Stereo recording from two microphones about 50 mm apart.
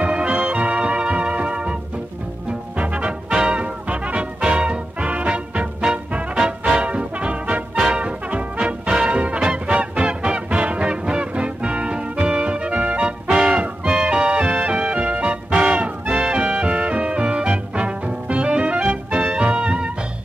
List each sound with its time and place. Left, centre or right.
0.0 s organ: right
2.8 s music: right
6.9 s brass instrument: right
7.7 s music: centre
13.3 s music: centre